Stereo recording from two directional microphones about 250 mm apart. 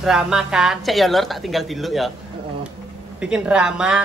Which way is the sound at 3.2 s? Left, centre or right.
Centre.